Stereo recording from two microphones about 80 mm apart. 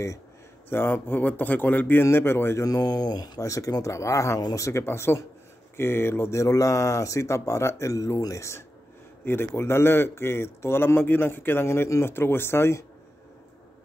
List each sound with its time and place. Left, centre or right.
0.7 s a man's voice: left
2.6 s speech: left
3.4 s a man's voice: left
4.4 s speech: left
4.6 s a man's voice: left
9.2 s a man's voice: left